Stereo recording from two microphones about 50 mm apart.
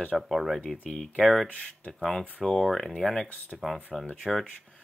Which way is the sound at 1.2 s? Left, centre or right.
Centre.